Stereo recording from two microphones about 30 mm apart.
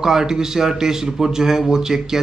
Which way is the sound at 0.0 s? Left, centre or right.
Centre.